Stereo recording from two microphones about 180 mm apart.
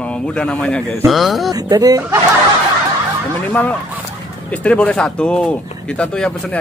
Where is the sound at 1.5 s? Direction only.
20° right (ahead or behind).